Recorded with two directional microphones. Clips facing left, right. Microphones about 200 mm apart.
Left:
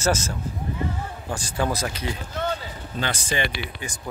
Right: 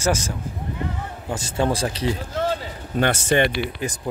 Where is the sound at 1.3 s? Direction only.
25° right (ahead or behind).